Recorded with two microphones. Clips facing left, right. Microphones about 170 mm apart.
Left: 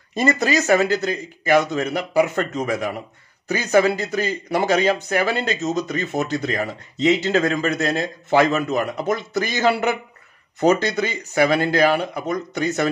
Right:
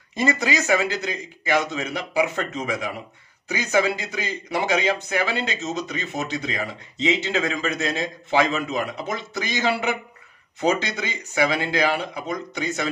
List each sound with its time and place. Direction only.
0.7 s a man's voice: 45° left (ahead or behind)
3.4 s a man's voice: 50° left (ahead or behind)